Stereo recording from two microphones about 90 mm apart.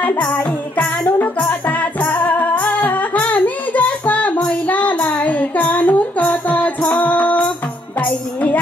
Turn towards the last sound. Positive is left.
turn(degrees=15)  # may be behind; listen again after turning